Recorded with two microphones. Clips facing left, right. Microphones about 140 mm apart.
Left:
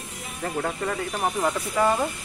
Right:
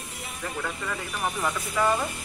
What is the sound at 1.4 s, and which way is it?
Speech, 25° left (ahead or behind).